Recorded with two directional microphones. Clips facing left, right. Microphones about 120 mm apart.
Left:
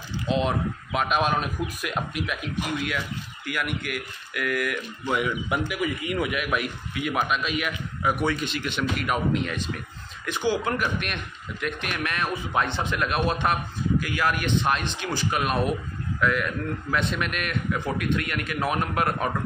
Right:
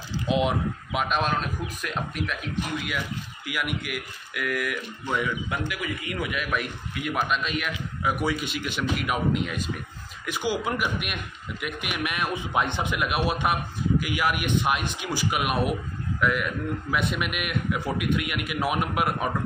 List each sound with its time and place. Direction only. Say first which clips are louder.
0.3 s speech: even; 10° right (ahead or behind)
1.0 s a man's voice: left 2 dB; 5° left (ahead or behind)
5.0 s a man's voice: left 2 dB; 10° left (ahead or behind)
5.7 s a man's voice: left 4 dB; 20° left (ahead or behind)
6.3 s a man's voice: left 2 dB; 10° left (ahead or behind); by 19.3 s 10° right (ahead or behind)